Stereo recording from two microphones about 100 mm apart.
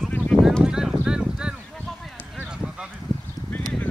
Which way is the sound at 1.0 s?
10° right (ahead or behind).